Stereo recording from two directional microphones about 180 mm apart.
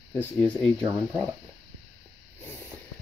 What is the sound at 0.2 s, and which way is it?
Speech, 10° left (ahead or behind).